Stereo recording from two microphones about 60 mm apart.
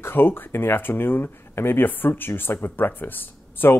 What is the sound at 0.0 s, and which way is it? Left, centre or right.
Speech, left.